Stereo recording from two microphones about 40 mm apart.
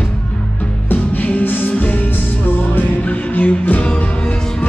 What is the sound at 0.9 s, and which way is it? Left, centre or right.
Music, left.